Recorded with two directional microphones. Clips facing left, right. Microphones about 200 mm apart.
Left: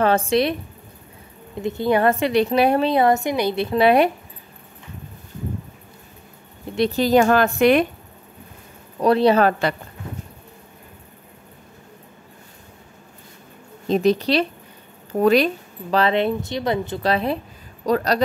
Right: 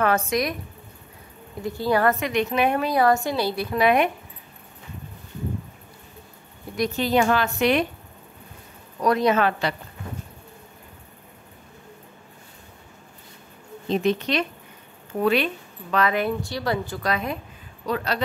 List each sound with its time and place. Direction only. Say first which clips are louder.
0.0 s a woman's voice: left 4 dB; 30° left (ahead or behind)
1.6 s a woman's voice: left 3 dB; 20° left (ahead or behind)
6.7 s a woman's voice: left 5 dB; 30° left (ahead or behind); by 7.8 s 50° left (ahead or behind)
9.0 s speech: left 5 dB; 30° left (ahead or behind); by 9.8 s 45° left (ahead or behind)
13.8 s a woman's voice: left 5 dB; 40° left (ahead or behind)
17.8 s speech: left 7 dB; 40° left (ahead or behind)